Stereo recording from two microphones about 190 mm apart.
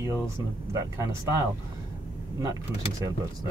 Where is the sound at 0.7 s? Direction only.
15° right (ahead or behind).